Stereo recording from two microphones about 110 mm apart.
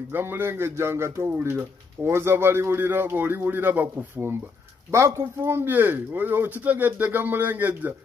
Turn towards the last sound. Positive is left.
turn(degrees=-15)  # may be behind; listen again after turning